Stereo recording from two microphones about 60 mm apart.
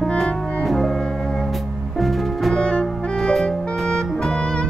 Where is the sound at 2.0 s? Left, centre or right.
Centre.